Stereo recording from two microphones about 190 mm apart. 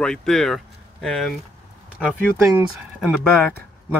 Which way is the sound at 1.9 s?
10° right (ahead or behind).